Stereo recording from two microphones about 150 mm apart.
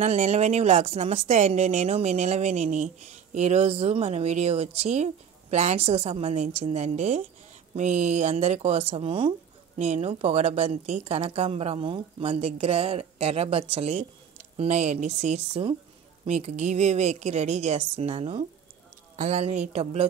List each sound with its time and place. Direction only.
0.0 s speech: 50° right (ahead or behind)